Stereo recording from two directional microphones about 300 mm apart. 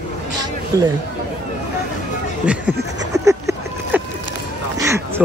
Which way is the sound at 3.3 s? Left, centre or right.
Centre.